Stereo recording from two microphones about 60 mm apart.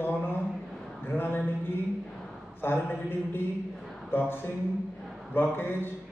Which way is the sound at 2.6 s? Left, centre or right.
Left.